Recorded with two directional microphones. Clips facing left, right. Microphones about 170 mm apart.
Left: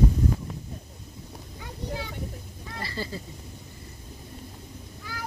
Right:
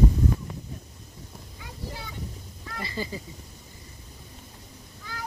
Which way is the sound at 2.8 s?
15° right (ahead or behind).